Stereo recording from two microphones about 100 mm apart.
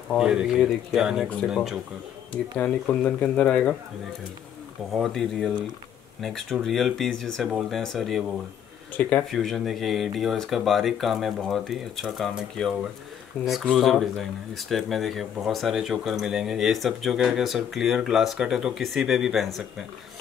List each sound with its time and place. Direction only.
0.2 s speech: 10° right (ahead or behind)
2.3 s speech: 10° left (ahead or behind)
4.9 s speech: centre (ahead or behind)
9.0 s speech: 20° left (ahead or behind)
9.3 s speech: centre (ahead or behind)